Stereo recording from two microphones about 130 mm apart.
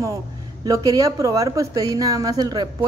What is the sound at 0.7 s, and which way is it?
A woman's voice, 25° right (ahead or behind).